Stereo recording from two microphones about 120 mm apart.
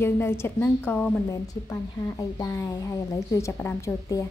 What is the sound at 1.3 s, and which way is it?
Speech, 30° left (ahead or behind).